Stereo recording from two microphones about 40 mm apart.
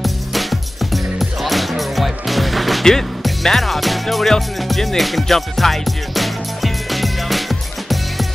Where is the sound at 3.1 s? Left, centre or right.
Centre.